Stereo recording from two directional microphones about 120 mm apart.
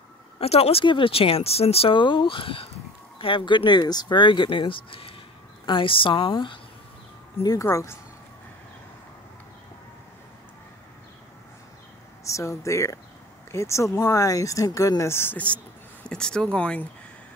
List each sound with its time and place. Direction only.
0.4 s speech: 55° left (ahead or behind)
7.6 s speech: 20° left (ahead or behind)
12.3 s speech: 25° left (ahead or behind)